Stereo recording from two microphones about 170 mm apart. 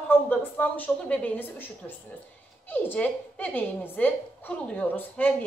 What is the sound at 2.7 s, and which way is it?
A woman's voice, 10° left (ahead or behind).